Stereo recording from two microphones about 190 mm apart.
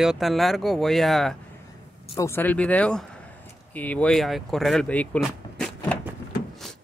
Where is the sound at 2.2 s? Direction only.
10° left (ahead or behind).